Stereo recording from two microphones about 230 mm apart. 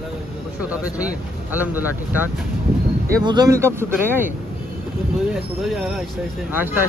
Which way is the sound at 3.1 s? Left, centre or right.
Centre.